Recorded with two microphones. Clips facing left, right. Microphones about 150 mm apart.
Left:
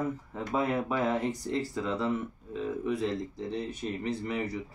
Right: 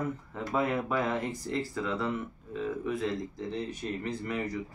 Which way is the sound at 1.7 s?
20° left (ahead or behind).